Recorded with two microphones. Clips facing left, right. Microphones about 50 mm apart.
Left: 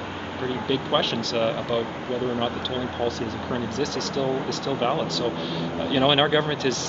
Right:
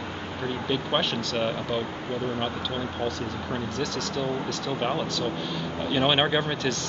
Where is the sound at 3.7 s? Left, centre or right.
Centre.